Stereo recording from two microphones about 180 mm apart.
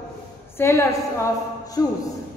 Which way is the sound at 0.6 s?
15° left (ahead or behind).